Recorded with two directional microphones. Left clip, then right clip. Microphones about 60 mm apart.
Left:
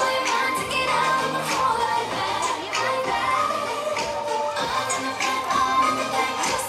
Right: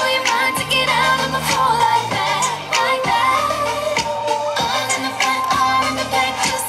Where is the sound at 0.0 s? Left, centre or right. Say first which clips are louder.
Right 5 dB; right.